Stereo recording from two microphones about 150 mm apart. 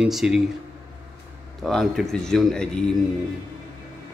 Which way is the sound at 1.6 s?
Centre (ahead or behind).